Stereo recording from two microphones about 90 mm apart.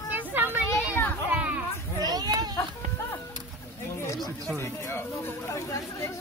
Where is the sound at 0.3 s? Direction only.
20° right (ahead or behind).